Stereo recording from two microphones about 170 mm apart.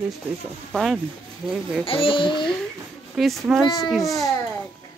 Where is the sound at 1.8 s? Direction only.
30° left (ahead or behind).